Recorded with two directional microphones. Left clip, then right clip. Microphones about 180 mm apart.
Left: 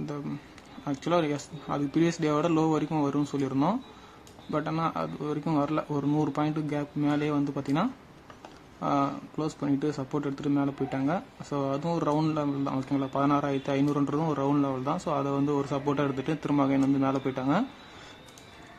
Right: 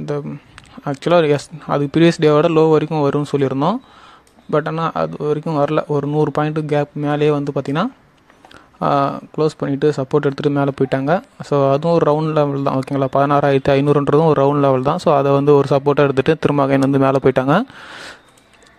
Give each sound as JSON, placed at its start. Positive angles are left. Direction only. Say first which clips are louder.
{"t": 0.8, "sound": "speech", "louder": "right 13 dB", "side_deg": -45}